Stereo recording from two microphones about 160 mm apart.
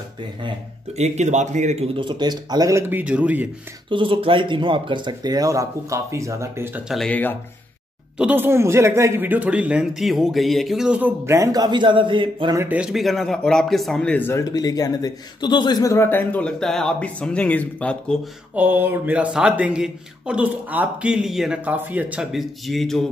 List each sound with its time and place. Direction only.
0.9 s speech: 45° right (ahead or behind)
2.0 s speech: 30° right (ahead or behind); by 3.4 s 10° right (ahead or behind)
3.9 s speech: 30° right (ahead or behind); by 6.8 s 15° right (ahead or behind)
6.9 s a man's voice: 5° left (ahead or behind)
8.2 s speech: 10° right (ahead or behind); by 12.5 s 30° right (ahead or behind)
12.5 s a man's voice: 10° right (ahead or behind); by 14.4 s 10° left (ahead or behind)
14.4 s a man's voice: 25° left (ahead or behind); by 18.2 s 5° left (ahead or behind)
18.5 s speech: 10° right (ahead or behind)